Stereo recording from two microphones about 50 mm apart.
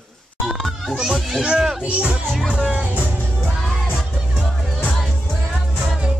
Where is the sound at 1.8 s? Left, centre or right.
Right.